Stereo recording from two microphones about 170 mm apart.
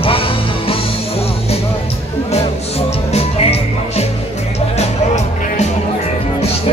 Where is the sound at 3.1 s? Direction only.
35° left (ahead or behind).